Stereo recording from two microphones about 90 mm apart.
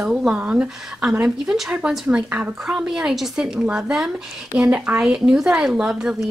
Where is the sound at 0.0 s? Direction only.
5° right (ahead or behind).